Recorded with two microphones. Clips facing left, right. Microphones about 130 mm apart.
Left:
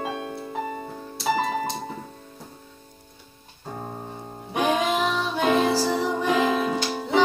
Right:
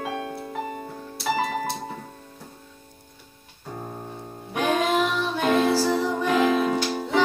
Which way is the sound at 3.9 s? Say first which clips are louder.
Even; 20° left (ahead or behind).